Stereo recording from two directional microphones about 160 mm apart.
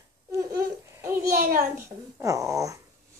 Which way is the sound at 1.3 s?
65° right (ahead or behind).